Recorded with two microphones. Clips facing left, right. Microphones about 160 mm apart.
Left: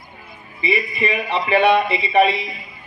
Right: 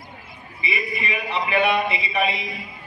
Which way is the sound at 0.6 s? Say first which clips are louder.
Left 7 dB; 35° left (ahead or behind).